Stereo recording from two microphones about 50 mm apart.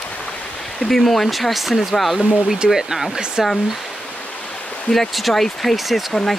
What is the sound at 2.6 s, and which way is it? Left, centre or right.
Speech, centre.